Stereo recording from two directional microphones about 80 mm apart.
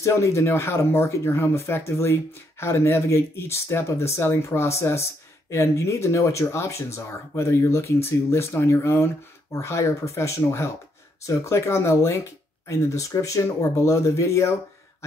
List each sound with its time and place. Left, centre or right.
0.0 s speech: left